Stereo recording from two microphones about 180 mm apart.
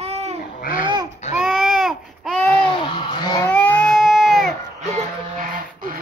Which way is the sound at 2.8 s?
25° left (ahead or behind).